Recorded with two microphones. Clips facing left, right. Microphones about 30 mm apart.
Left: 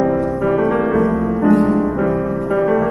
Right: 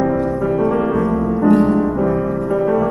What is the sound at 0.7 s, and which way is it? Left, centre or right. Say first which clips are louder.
Music: left 1 dB; centre.